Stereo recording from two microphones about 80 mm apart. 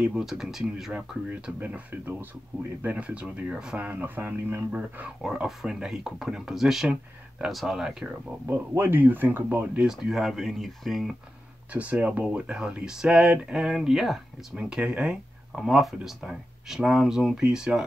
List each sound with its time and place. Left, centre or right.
0.0 s speech: centre
0.9 s speech: centre
5.2 s speech: centre
8.7 s speech: right
9.8 s speech: centre
11.7 s speech: centre